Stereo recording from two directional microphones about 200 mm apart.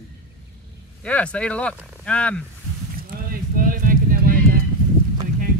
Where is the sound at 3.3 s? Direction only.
45° right (ahead or behind).